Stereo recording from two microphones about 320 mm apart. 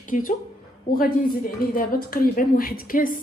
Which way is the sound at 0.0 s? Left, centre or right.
Left.